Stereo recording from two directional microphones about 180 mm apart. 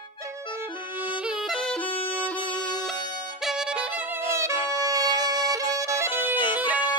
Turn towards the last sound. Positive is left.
turn(degrees=-10)  # may be behind; listen again after turning